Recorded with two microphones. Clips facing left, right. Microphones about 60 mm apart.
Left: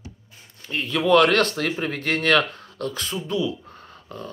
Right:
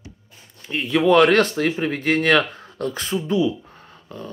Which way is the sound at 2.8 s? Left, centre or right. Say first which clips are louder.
Right 4 dB; right.